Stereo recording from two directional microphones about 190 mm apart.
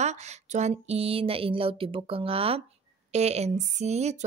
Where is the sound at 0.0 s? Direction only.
35° right (ahead or behind).